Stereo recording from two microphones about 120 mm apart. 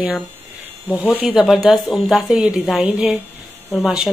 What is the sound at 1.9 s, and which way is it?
Speech, centre (ahead or behind).